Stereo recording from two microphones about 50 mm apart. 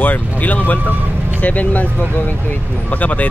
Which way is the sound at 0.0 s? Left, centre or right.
Left.